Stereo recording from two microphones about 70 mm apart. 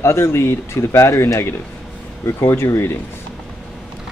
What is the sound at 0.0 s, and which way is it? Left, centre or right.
Speech, left.